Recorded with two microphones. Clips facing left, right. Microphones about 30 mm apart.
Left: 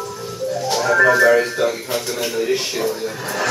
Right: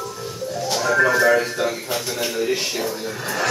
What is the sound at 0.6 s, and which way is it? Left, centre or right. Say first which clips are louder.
Music: left 3 dB; centre.